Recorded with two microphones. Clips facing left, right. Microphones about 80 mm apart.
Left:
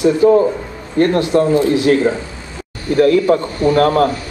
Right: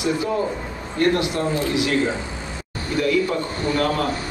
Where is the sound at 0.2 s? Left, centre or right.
Left.